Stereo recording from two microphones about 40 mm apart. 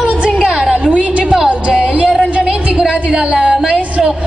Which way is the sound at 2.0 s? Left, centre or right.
Centre.